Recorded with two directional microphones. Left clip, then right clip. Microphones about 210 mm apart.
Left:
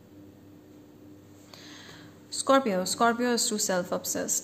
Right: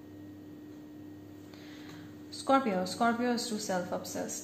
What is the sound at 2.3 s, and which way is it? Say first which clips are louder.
Speech: left 4 dB; 40° left (ahead or behind).